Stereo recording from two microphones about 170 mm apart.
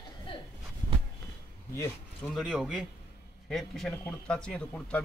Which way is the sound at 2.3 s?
5° right (ahead or behind).